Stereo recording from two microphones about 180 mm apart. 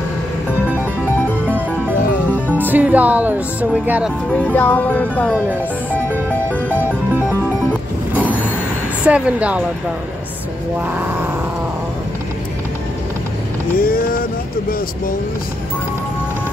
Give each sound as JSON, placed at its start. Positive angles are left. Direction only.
{"t": 2.3, "sound": "music", "side_deg": 10}
{"t": 2.6, "sound": "speech", "side_deg": -10}
{"t": 4.3, "sound": "music", "side_deg": 10}
{"t": 5.3, "sound": "speech", "side_deg": -10}
{"t": 9.0, "sound": "speech", "side_deg": -5}
{"t": 13.7, "sound": "speech", "side_deg": 55}